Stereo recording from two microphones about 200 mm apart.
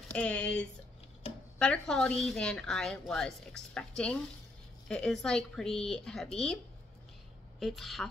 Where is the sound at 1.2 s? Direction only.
30° left (ahead or behind).